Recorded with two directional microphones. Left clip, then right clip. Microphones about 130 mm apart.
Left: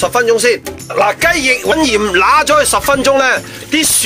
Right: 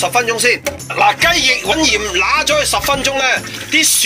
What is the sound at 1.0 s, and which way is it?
Speech, 55° left (ahead or behind).